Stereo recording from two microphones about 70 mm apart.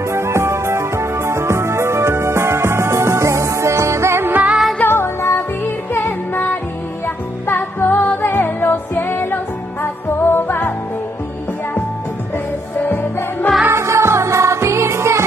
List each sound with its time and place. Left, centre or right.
0.1 s music: right
4.8 s music: left
7.4 s music: left
12.8 s music: left
13.7 s music: right